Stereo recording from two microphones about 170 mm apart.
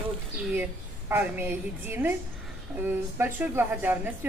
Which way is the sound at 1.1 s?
10° right (ahead or behind).